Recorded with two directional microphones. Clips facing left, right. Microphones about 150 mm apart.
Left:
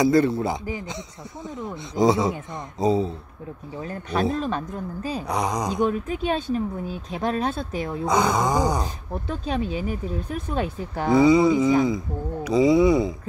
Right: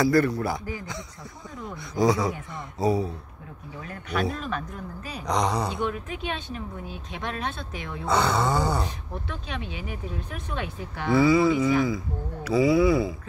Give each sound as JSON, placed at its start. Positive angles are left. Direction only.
{"t": 0.0, "sound": "speech", "side_deg": 20}
{"t": 5.2, "sound": "speech", "side_deg": 10}
{"t": 5.7, "sound": "speech", "side_deg": 40}
{"t": 8.1, "sound": "speech", "side_deg": 15}
{"t": 8.8, "sound": "speech", "side_deg": 35}
{"t": 11.1, "sound": "speech", "side_deg": 20}